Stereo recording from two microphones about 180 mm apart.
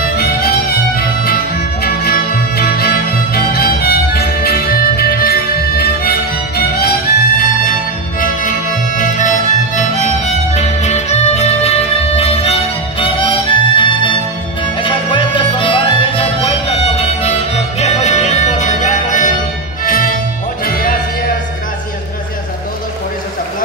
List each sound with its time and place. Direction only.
0.2 s music: 55° left (ahead or behind)